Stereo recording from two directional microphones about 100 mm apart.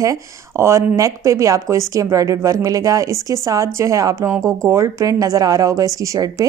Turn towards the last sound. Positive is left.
turn(degrees=-35)  # may be behind; listen again after turning